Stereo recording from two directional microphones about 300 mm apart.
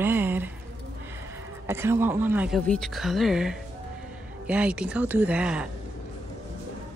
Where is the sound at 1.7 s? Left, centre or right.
Centre.